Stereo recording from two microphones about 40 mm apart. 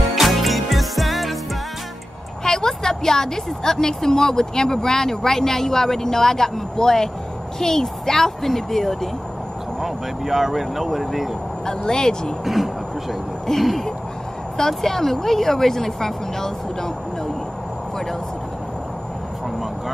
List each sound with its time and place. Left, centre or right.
0.1 s music: centre
2.4 s a woman's voice: centre
11.6 s a woman's voice: centre
12.5 s a woman's voice: centre